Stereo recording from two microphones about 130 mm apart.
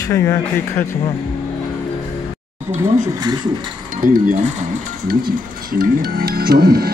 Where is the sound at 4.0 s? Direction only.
90° right.